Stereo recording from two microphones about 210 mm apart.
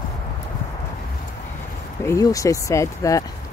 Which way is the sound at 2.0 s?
15° left (ahead or behind).